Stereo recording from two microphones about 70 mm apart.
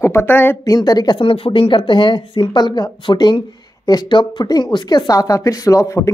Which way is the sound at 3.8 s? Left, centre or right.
Left.